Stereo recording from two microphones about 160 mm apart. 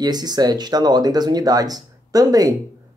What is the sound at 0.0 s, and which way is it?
Speech, 25° right (ahead or behind).